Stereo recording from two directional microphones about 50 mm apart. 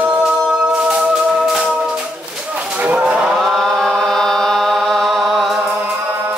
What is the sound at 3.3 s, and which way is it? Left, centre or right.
Chant, centre.